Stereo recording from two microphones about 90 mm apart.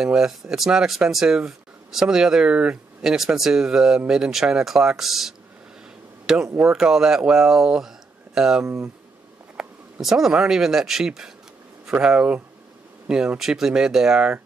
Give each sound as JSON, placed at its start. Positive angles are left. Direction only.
{"t": 0.0, "sound": "speech", "side_deg": -5}
{"t": 8.6, "sound": "speech", "side_deg": -30}
{"t": 9.6, "sound": "speech", "side_deg": -5}